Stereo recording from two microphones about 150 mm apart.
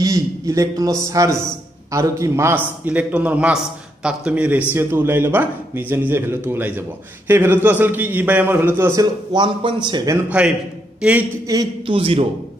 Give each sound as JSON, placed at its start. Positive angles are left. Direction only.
{"t": 0.0, "sound": "a man's voice", "side_deg": -25}
{"t": 9.3, "sound": "a man's voice", "side_deg": -35}
{"t": 10.4, "sound": "a man's voice", "side_deg": -5}
{"t": 11.5, "sound": "a man's voice", "side_deg": -20}
{"t": 11.8, "sound": "a man's voice", "side_deg": -35}